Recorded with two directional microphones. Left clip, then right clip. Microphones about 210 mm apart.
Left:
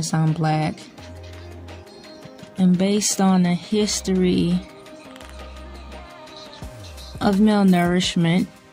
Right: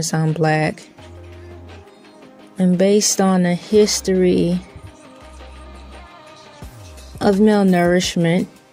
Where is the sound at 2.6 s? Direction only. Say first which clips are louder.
Right 6 dB; 25° right (ahead or behind).